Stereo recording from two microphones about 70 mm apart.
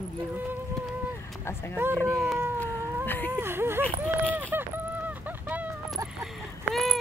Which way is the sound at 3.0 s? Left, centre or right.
Left.